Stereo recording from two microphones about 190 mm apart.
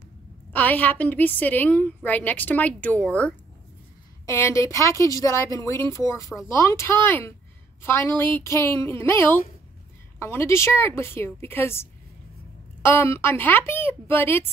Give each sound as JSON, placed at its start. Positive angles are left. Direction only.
{"t": 0.5, "sound": "a woman's voice", "side_deg": 10}